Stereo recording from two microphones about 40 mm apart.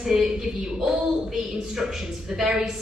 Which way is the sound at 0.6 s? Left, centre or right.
Centre.